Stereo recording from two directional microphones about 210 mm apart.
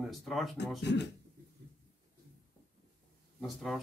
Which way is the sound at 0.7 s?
55° left (ahead or behind).